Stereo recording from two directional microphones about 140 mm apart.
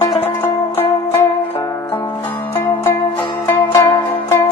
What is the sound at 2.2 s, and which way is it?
Zither, 15° left (ahead or behind).